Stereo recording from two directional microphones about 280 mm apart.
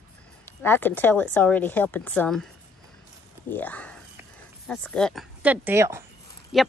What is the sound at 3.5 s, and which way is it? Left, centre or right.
Speech, centre.